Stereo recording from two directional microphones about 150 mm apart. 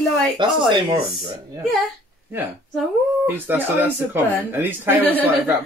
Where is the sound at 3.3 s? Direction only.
15° right (ahead or behind).